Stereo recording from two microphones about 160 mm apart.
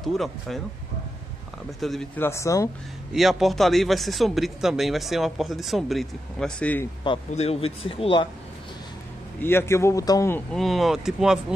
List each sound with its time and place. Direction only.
0.0 s speech: centre (ahead or behind)
1.8 s speech: centre (ahead or behind)
2.1 s speech: 15° left (ahead or behind)
3.1 s speech: centre (ahead or behind)
7.1 s speech: 40° left (ahead or behind)
9.4 s a man's voice: 15° left (ahead or behind)
10.5 s speech: centre (ahead or behind)